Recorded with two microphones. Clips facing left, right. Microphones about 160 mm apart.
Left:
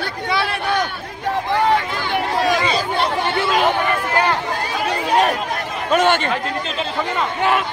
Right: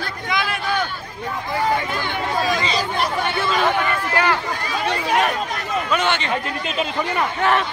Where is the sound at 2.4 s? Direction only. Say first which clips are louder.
Left 2 dB; 65° left (ahead or behind).